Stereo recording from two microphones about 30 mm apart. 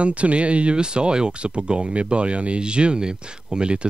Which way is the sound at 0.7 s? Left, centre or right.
Right.